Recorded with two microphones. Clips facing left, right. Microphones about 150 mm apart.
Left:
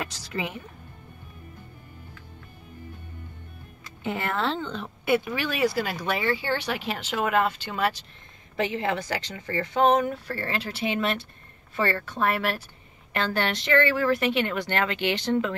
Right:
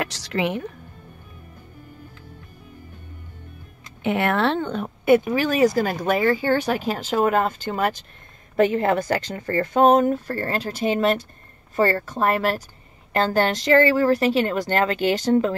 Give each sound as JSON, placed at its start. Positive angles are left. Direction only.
{"t": 0.0, "sound": "speech", "side_deg": -80}
{"t": 4.0, "sound": "a woman's voice", "side_deg": -65}